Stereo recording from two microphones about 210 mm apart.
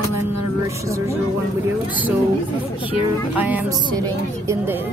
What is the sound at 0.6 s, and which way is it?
Speech, 15° right (ahead or behind).